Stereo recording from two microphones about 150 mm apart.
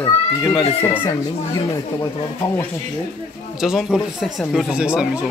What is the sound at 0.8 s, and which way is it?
Speech, 15° left (ahead or behind).